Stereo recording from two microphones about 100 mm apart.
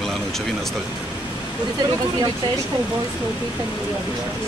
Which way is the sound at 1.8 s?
40° right (ahead or behind).